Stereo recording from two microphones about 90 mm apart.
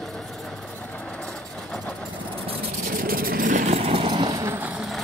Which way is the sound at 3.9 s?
75° right (ahead or behind).